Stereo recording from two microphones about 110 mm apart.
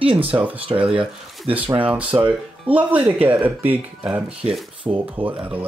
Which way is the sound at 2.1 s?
40° right (ahead or behind).